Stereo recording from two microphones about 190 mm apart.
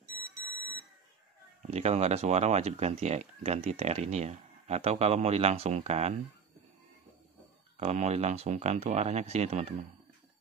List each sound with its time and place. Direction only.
1.6 s speech: 35° right (ahead or behind)
7.8 s speech: 35° right (ahead or behind)